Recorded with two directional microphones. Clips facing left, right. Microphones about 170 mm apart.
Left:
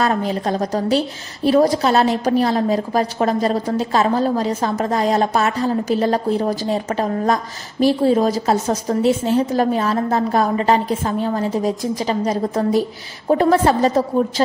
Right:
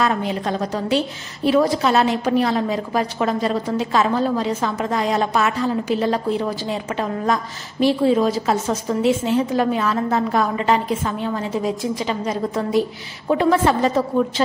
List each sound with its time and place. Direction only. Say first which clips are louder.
0.0 s a woman's voice: left 2 dB; 40° left (ahead or behind)